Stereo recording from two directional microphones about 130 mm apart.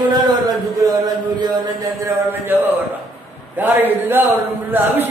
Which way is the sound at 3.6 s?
15° right (ahead or behind).